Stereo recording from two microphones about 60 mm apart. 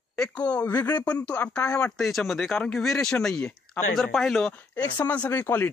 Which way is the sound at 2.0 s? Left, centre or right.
Centre.